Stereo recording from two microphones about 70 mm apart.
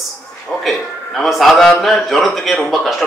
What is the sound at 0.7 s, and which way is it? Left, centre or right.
A man's voice, centre.